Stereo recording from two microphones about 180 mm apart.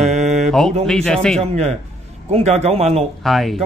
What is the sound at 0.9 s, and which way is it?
Speech, 5° left (ahead or behind).